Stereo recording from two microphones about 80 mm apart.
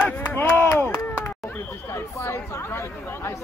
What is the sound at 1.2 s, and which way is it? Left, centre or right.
Speech, left.